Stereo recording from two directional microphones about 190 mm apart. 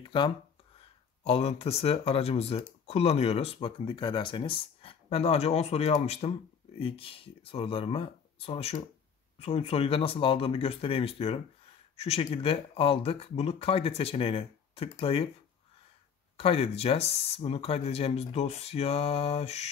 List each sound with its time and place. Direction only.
1.2 s speech: 30° left (ahead or behind)
16.3 s speech: 30° left (ahead or behind)